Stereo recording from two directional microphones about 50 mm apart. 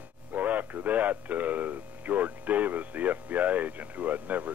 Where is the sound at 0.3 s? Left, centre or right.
Right.